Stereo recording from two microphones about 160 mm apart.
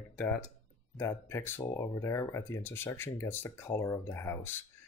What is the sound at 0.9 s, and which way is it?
Speech, 15° left (ahead or behind).